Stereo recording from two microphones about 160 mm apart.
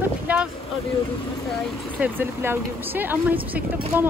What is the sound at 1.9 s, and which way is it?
Speech, 15° right (ahead or behind).